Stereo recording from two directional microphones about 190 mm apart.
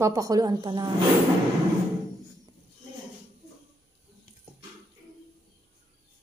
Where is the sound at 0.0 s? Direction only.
15° right (ahead or behind).